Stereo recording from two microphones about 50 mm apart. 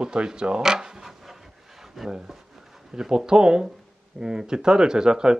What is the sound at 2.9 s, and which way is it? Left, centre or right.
Speech, centre.